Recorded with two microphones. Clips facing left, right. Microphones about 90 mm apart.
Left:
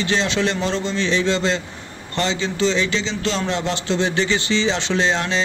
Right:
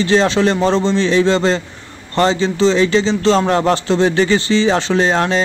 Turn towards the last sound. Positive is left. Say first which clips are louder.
# right 5 dB
turn(degrees=-45)  # may be behind; listen again after turning